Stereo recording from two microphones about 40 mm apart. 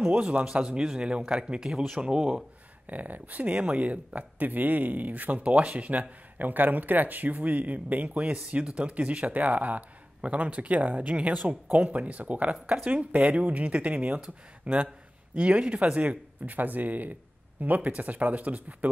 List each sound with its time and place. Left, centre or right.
0.0 s a man's voice: centre
2.9 s speech: right
8.2 s speech: right